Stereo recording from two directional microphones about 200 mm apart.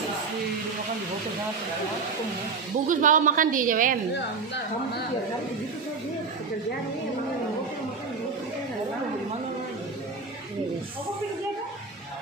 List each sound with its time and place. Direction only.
2.9 s a woman's voice: 40° right (ahead or behind)